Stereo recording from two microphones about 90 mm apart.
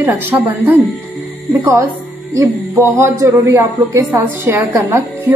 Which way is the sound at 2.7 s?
30° right (ahead or behind).